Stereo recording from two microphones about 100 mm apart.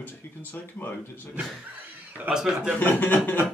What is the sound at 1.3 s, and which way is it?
Speech, 20° right (ahead or behind).